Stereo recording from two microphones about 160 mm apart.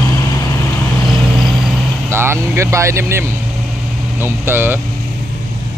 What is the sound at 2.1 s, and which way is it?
Vehicle, 15° right (ahead or behind).